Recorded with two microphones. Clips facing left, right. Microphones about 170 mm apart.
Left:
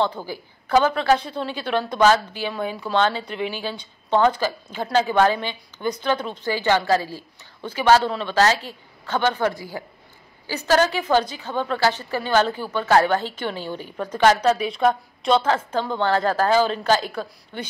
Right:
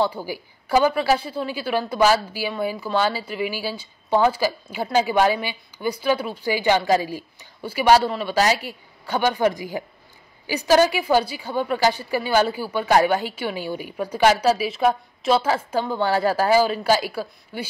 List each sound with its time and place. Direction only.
0.0 s a woman's voice: 10° right (ahead or behind)